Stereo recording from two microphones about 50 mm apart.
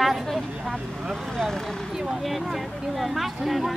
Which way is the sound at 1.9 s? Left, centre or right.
Centre.